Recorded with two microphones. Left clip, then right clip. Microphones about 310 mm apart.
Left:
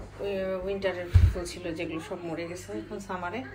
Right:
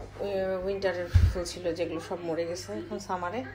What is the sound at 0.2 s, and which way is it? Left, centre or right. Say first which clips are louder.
A woman's voice: right 1 dB; centre.